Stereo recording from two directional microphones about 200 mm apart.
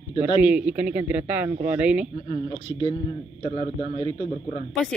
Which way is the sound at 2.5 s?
25° left (ahead or behind).